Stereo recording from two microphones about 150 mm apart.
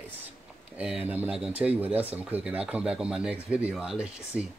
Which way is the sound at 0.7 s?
5° right (ahead or behind).